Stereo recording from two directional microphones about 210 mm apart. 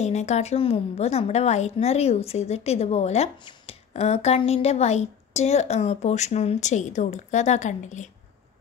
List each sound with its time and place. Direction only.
0.0 s a woman's voice: 30° left (ahead or behind)